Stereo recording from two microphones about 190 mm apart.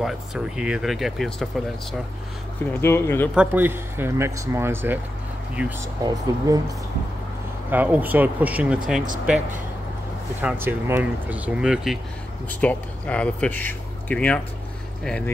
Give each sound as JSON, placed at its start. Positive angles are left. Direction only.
{"t": 0.0, "sound": "speech", "side_deg": -5}
{"t": 2.8, "sound": "speech", "side_deg": 10}
{"t": 3.3, "sound": "speech", "side_deg": -10}
{"t": 6.0, "sound": "speech", "side_deg": -20}
{"t": 7.7, "sound": "speech", "side_deg": -10}
{"t": 10.4, "sound": "speech", "side_deg": -10}
{"t": 12.4, "sound": "speech", "side_deg": 5}